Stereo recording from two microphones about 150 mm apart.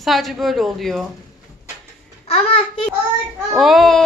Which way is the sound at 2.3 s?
40° left (ahead or behind).